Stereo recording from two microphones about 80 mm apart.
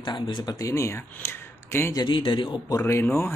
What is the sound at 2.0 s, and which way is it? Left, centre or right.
Speech, left.